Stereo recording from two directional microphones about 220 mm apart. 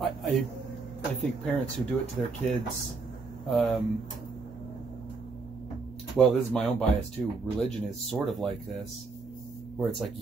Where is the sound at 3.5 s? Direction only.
Centre (ahead or behind).